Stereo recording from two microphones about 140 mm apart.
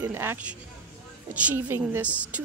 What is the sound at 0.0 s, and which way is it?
Speech, 15° right (ahead or behind).